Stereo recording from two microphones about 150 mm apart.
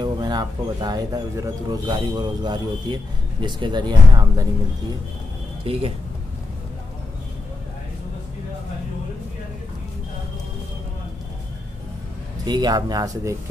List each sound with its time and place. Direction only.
0.0 s speech: 30° right (ahead or behind)
5.6 s speech: 40° right (ahead or behind)
12.4 s speech: 25° right (ahead or behind)